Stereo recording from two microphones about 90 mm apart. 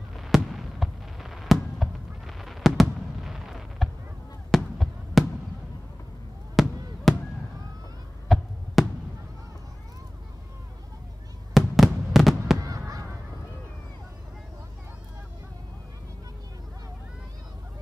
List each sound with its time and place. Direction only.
0.2 s fireworks: centre (ahead or behind)
6.6 s fireworks: centre (ahead or behind)
8.3 s heart sounds: centre (ahead or behind)
8.8 s fireworks: centre (ahead or behind)
11.5 s fireworks: centre (ahead or behind)
12.6 s honk: 40° right (ahead or behind)